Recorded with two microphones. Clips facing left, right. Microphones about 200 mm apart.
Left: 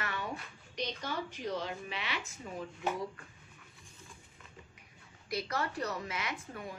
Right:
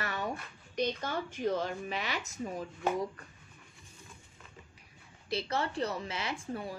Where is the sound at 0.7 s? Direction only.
50° right (ahead or behind).